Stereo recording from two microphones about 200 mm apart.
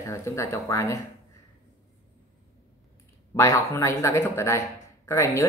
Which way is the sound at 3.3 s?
15° left (ahead or behind).